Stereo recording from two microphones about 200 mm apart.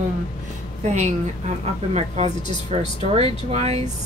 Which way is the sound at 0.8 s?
35° right (ahead or behind).